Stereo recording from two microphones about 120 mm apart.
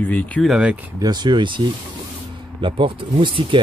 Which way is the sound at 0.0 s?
15° left (ahead or behind).